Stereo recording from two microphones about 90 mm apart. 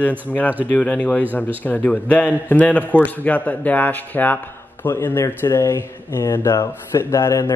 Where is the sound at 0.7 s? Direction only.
15° left (ahead or behind).